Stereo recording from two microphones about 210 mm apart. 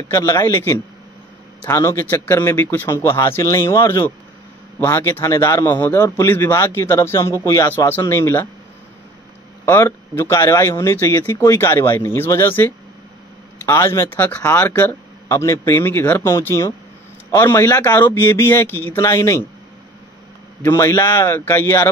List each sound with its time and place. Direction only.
0.1 s a man's voice: 15° left (ahead or behind)
9.7 s a man's voice: 10° left (ahead or behind)
20.6 s a man's voice: 15° left (ahead or behind)